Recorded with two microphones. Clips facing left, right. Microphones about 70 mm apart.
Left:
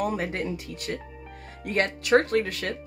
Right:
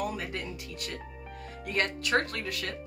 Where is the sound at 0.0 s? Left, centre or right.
Left.